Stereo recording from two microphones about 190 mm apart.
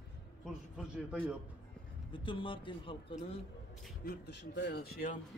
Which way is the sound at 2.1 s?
25° left (ahead or behind).